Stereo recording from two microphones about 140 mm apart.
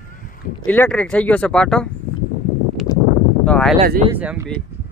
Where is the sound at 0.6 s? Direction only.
10° left (ahead or behind).